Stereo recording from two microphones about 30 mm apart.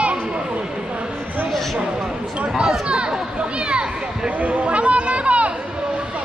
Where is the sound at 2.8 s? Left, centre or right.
Right.